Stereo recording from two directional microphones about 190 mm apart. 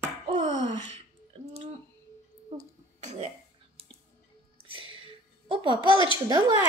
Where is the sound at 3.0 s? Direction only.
35° right (ahead or behind).